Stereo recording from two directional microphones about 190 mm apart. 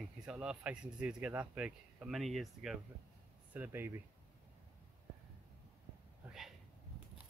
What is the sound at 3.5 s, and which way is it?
Speech, 10° right (ahead or behind).